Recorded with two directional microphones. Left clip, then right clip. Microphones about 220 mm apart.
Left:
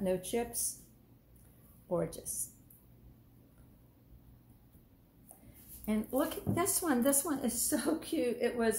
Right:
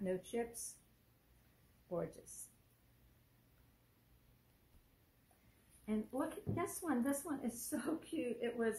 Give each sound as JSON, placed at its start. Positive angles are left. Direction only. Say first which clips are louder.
{"t": 0.0, "sound": "a woman's voice", "louder": "left 7 dB", "side_deg": 20}
{"t": 1.9, "sound": "a woman's voice", "louder": "left 8 dB", "side_deg": 20}
{"t": 5.9, "sound": "a woman's voice", "louder": "left 8 dB", "side_deg": 25}